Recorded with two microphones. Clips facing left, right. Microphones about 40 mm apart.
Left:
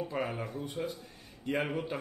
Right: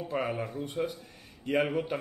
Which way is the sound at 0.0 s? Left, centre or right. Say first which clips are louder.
Right 3 dB; centre.